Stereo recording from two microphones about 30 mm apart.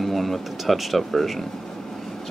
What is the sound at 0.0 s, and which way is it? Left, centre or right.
Speech, centre.